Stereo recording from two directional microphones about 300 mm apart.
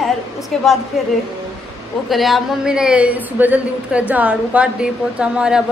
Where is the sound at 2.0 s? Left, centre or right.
Centre.